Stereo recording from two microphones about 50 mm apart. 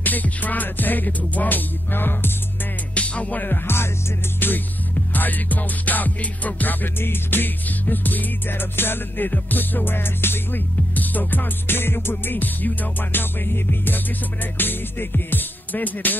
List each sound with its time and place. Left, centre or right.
0.0 s music: left
2.9 s music: left
3.4 s music: left